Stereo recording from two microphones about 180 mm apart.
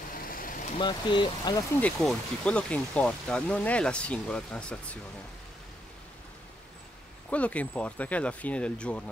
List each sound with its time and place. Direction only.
0.2 s vehicle: 55° left (ahead or behind)
0.7 s speech: 25° left (ahead or behind)
1.8 s speech: 5° left (ahead or behind)
7.2 s speech: 5° left (ahead or behind)